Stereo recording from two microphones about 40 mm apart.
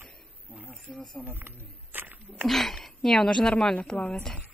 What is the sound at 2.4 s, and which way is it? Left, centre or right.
Speech, centre.